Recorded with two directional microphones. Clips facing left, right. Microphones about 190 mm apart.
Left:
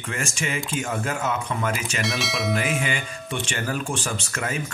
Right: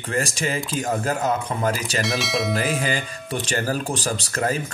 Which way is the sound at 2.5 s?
35° right (ahead or behind).